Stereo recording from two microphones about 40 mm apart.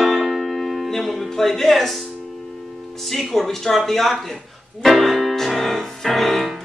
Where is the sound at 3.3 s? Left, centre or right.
Centre.